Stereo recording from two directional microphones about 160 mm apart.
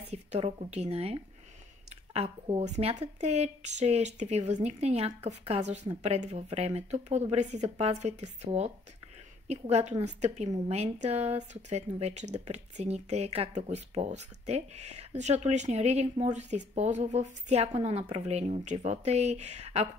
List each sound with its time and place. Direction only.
0.1 s speech: 40° right (ahead or behind)
1.9 s a sound: 40° right (ahead or behind)
2.6 s speech: 45° right (ahead or behind)